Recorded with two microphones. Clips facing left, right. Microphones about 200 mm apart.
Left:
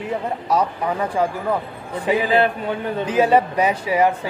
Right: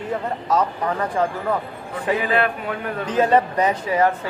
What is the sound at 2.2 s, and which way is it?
Speech, 30° left (ahead or behind).